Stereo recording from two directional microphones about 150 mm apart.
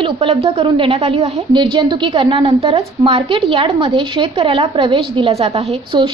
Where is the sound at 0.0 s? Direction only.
40° right (ahead or behind).